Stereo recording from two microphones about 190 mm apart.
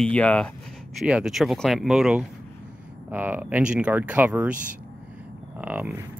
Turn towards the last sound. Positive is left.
turn(degrees=-10)  # may be behind; listen again after turning